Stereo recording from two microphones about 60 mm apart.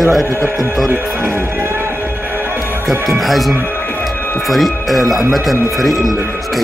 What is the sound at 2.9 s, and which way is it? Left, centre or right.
Speech, centre.